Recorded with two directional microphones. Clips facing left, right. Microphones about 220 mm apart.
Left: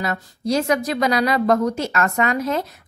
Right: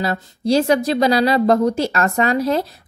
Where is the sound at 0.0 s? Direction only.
30° right (ahead or behind).